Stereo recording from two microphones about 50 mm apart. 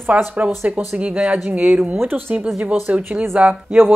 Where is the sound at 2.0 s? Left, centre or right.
Right.